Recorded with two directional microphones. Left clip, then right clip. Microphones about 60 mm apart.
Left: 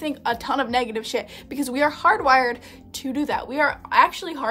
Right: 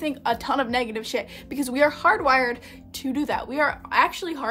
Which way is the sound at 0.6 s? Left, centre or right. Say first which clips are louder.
Left 2 dB; left.